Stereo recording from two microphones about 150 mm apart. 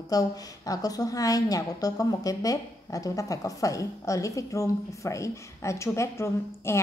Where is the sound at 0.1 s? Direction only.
25° left (ahead or behind).